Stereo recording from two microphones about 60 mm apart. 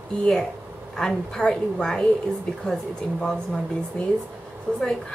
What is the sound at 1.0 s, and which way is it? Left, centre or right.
A woman's voice, centre.